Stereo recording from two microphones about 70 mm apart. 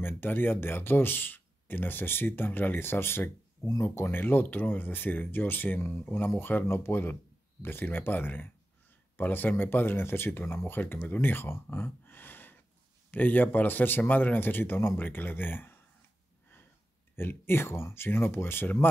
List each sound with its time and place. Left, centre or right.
0.0 s speech: left
17.1 s speech: left